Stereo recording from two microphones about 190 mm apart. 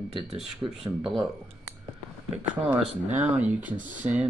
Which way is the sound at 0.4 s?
Centre (ahead or behind).